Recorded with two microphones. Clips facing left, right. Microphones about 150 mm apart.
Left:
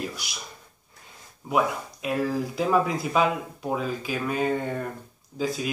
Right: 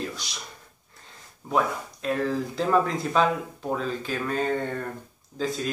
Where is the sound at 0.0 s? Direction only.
10° left (ahead or behind).